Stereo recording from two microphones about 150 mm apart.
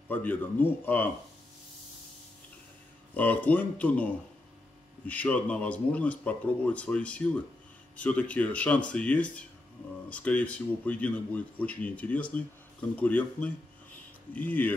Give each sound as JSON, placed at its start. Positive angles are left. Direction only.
{"t": 0.1, "sound": "speech", "side_deg": 10}
{"t": 3.2, "sound": "speech", "side_deg": 10}